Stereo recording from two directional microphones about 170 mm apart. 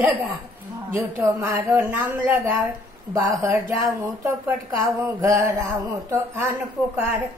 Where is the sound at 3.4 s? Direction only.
20° right (ahead or behind).